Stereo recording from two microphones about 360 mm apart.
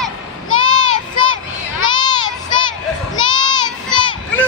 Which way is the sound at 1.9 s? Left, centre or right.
Centre.